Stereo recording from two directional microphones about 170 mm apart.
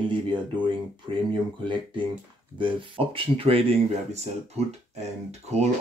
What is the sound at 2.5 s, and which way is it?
Speech, 30° right (ahead or behind).